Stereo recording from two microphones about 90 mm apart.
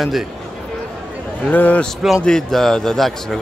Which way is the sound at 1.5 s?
15° left (ahead or behind).